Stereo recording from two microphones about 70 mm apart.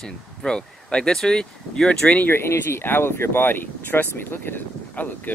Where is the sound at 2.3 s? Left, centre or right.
Left.